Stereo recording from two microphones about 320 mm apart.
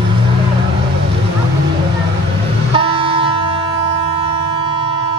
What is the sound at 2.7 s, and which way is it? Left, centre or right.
Vehicle, centre.